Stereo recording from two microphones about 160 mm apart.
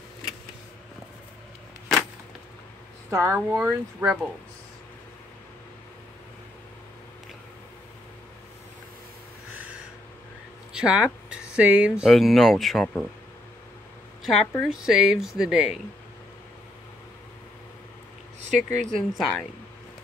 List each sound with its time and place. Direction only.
3.1 s speech: 15° right (ahead or behind)
10.7 s speech: 5° right (ahead or behind)
14.2 s a woman's voice: centre (ahead or behind)
18.7 s speech: 50° right (ahead or behind)
19.1 s speech: centre (ahead or behind)